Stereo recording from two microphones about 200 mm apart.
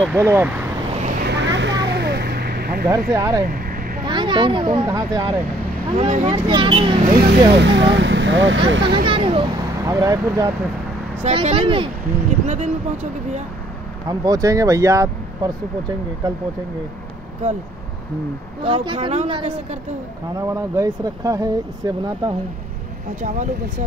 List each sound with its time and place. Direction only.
0.0 s speech: 10° right (ahead or behind)
1.3 s vehicle: 65° right (ahead or behind)
3.1 s speech: 15° right (ahead or behind)
3.4 s vehicle: 45° right (ahead or behind)
4.0 s speech: 25° right (ahead or behind)
5.9 s speech: 35° right (ahead or behind)
7.2 s speech: 60° right (ahead or behind)
8.9 s speech: 25° right (ahead or behind)
11.2 s speech: 30° right (ahead or behind)
14.0 s speech: 20° right (ahead or behind)
18.6 s speech: 25° right (ahead or behind)
20.3 s speech: 15° right (ahead or behind)
23.2 s speech: 35° right (ahead or behind)